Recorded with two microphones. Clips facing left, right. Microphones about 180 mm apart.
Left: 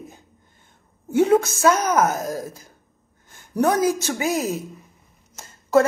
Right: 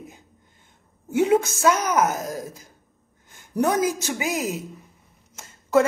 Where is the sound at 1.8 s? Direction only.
50° left (ahead or behind).